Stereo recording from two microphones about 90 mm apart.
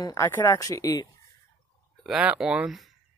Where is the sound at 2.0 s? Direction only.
10° right (ahead or behind).